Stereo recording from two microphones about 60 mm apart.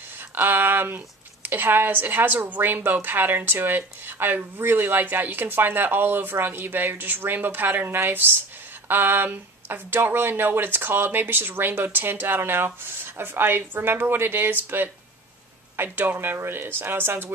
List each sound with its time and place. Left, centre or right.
0.3 s speech: right